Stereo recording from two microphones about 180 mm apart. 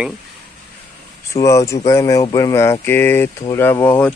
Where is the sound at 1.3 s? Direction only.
15° left (ahead or behind).